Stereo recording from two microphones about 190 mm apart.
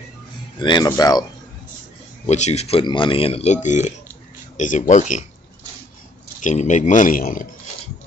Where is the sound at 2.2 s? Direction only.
35° left (ahead or behind).